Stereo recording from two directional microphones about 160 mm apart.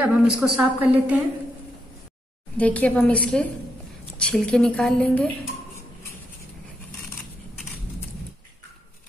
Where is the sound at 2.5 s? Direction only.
10° left (ahead or behind).